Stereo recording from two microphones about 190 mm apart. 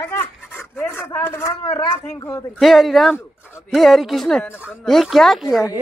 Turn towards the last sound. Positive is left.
turn(degrees=0)  # may be behind; listen again after turning